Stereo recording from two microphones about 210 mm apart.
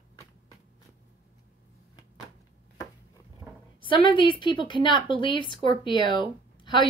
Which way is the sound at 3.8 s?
25° left (ahead or behind).